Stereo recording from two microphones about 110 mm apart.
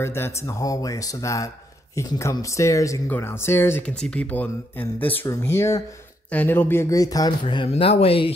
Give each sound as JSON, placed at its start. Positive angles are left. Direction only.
{"t": 0.0, "sound": "speech", "side_deg": 25}
{"t": 3.8, "sound": "speech", "side_deg": 10}
{"t": 6.3, "sound": "speech", "side_deg": 15}
{"t": 7.4, "sound": "speech", "side_deg": 55}
{"t": 7.7, "sound": "speech", "side_deg": 65}